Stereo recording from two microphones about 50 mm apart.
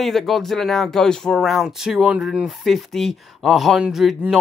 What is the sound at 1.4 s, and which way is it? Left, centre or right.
Speech, centre.